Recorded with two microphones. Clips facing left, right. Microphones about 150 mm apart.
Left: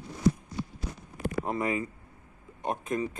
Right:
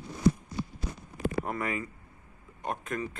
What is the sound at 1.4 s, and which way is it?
Speech, 25° left (ahead or behind).